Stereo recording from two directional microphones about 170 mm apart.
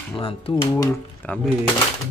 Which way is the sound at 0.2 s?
30° left (ahead or behind).